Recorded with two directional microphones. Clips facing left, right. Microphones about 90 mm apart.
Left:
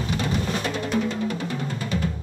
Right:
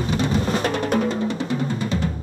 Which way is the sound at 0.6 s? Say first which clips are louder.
Right 4 dB; 55° right (ahead or behind).